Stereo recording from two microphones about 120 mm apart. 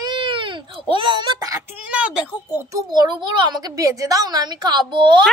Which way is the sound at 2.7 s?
30° right (ahead or behind).